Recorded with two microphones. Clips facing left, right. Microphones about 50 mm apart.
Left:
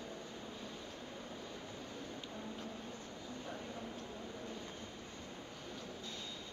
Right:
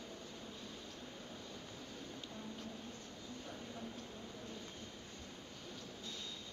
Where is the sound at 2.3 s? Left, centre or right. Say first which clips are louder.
Left 2 dB; centre.